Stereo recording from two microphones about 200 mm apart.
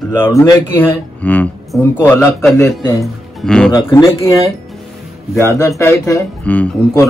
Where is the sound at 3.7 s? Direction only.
15° left (ahead or behind).